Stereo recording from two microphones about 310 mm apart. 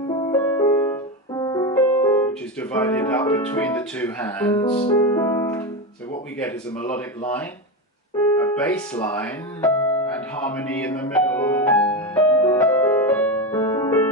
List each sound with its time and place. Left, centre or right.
0.1 s music: centre
2.7 s speech: centre
4.6 s music: centre
4.9 s music: centre
6.4 s speech: centre
8.5 s music: centre